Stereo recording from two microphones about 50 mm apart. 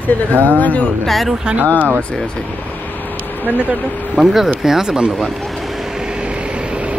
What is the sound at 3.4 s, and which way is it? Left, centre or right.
Speech, left.